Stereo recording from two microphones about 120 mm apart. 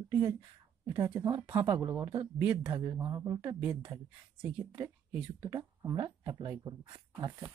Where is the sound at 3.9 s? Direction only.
10° right (ahead or behind); by 6.5 s 25° right (ahead or behind).